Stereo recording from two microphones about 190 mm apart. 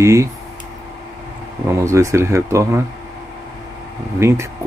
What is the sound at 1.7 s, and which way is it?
Speech, 15° right (ahead or behind).